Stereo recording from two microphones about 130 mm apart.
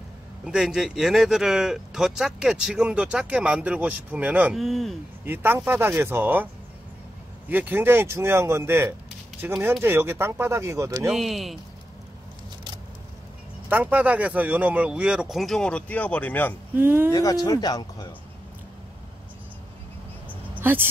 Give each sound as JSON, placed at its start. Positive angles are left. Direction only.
{"t": 0.5, "sound": "speech", "side_deg": -5}
{"t": 4.6, "sound": "speech", "side_deg": 0}
{"t": 5.2, "sound": "speech", "side_deg": -15}
{"t": 11.1, "sound": "speech", "side_deg": 0}
{"t": 13.7, "sound": "speech", "side_deg": -15}
{"t": 16.7, "sound": "speech", "side_deg": -15}
{"t": 17.1, "sound": "speech", "side_deg": 30}
{"t": 20.5, "sound": "speech", "side_deg": -15}